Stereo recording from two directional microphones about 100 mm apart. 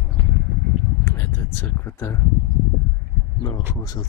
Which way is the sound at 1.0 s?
20° left (ahead or behind).